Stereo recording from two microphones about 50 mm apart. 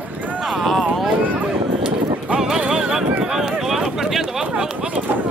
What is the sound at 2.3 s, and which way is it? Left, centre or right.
Horse, centre.